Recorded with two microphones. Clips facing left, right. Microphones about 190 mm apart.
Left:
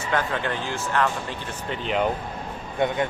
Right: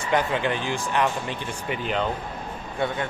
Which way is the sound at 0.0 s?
15° right (ahead or behind).